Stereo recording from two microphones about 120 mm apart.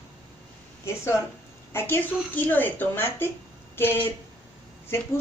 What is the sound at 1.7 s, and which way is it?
A woman's voice, 20° left (ahead or behind).